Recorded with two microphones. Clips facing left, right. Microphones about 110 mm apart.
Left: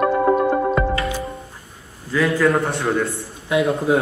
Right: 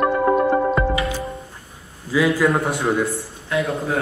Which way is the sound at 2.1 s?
Centre (ahead or behind).